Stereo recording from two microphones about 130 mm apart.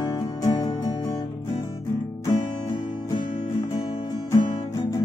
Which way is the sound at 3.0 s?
30° left (ahead or behind).